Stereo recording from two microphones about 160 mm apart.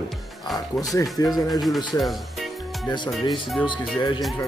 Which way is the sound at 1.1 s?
25° left (ahead or behind).